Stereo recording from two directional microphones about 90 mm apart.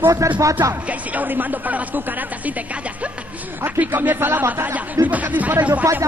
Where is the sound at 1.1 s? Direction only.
20° right (ahead or behind).